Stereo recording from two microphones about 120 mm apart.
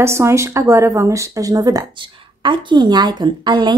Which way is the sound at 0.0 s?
20° right (ahead or behind).